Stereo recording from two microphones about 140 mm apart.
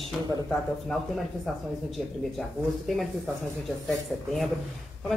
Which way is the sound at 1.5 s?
Centre (ahead or behind).